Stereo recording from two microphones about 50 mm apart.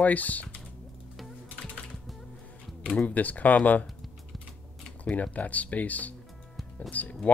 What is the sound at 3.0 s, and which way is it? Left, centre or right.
Speech, left.